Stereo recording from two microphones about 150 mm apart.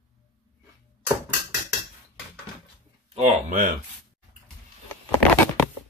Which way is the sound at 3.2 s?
60° right (ahead or behind).